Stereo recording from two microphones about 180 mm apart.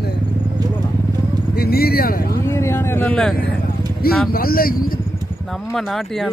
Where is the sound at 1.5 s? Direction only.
60° left (ahead or behind).